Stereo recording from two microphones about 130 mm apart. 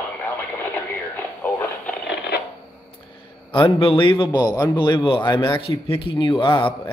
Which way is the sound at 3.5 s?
40° left (ahead or behind).